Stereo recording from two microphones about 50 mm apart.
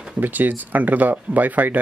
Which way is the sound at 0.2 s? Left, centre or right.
Right.